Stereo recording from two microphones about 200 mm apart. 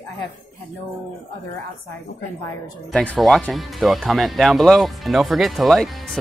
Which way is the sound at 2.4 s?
5° left (ahead or behind).